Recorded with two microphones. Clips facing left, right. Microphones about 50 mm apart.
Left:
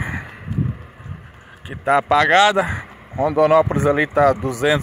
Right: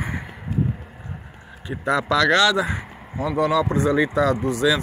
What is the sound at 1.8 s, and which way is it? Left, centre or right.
Speech, left.